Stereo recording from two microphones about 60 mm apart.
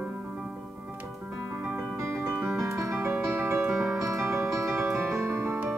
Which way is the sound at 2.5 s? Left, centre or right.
Right.